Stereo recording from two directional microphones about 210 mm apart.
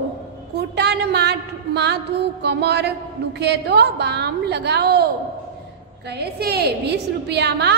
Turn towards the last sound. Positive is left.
turn(degrees=-55)  # may be behind; listen again after turning